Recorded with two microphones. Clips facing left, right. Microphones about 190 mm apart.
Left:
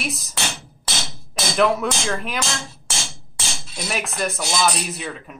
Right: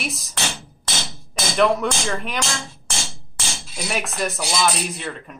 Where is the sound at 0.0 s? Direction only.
Centre (ahead or behind).